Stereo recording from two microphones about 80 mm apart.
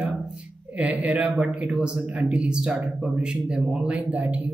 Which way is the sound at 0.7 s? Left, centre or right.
Centre.